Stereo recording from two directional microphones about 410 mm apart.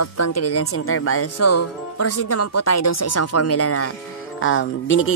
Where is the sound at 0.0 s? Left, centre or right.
Left.